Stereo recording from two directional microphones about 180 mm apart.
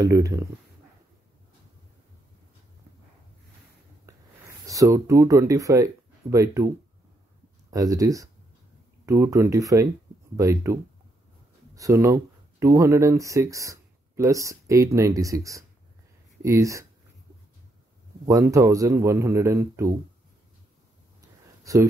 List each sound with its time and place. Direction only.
0.0 s a man's voice: 20° right (ahead or behind)
4.0 s a man's voice: 15° right (ahead or behind)
7.7 s a man's voice: 20° right (ahead or behind)
18.2 s a man's voice: 20° right (ahead or behind)
21.2 s a sound: 20° right (ahead or behind)